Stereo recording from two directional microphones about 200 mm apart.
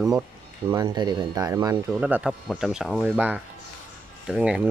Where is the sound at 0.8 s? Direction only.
20° right (ahead or behind).